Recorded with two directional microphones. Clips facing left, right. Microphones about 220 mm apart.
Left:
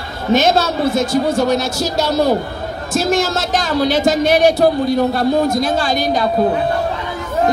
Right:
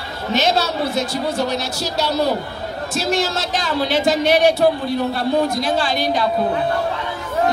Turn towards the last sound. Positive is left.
turn(degrees=45)  # may be behind; listen again after turning